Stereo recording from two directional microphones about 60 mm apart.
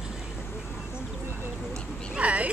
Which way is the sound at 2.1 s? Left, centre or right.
Right.